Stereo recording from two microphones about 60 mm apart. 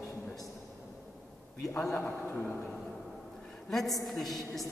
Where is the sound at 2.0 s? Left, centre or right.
Left.